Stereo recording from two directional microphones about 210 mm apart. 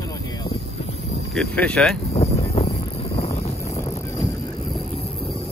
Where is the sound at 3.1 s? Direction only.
30° left (ahead or behind).